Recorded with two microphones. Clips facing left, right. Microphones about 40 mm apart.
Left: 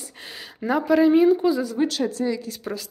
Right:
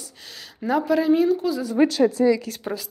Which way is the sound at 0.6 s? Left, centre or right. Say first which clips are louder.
Left 2 dB; centre.